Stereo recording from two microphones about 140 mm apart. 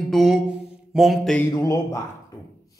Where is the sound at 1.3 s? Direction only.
20° left (ahead or behind).